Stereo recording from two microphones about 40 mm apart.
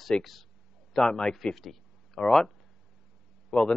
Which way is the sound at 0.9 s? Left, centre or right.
Centre.